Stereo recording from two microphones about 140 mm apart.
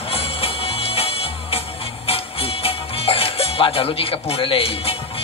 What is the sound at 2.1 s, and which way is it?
Music, 45° left (ahead or behind).